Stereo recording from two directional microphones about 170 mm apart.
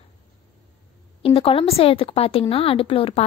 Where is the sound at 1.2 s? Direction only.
35° left (ahead or behind).